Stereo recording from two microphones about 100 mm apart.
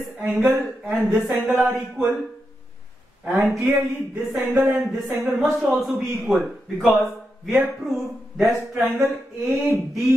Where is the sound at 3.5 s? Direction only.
15° right (ahead or behind).